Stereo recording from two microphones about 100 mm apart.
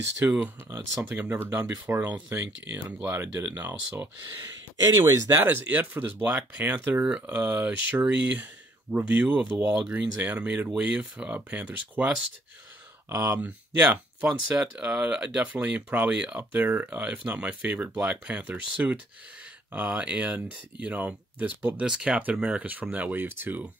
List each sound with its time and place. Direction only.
0.2 s speech: 15° right (ahead or behind)
5.0 s speech: 35° right (ahead or behind)
5.4 s speech: 20° right (ahead or behind)
13.1 s speech: 30° right (ahead or behind)
13.4 s speech: 15° right (ahead or behind)